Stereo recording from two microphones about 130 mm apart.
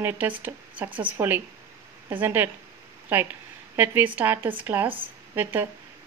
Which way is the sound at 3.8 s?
15° right (ahead or behind).